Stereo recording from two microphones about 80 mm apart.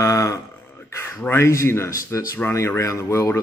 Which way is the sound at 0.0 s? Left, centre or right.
Left.